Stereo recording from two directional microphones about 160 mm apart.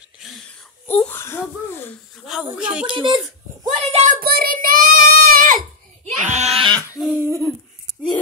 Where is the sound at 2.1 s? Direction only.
5° right (ahead or behind).